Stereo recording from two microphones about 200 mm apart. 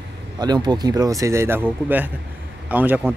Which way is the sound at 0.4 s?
20° right (ahead or behind).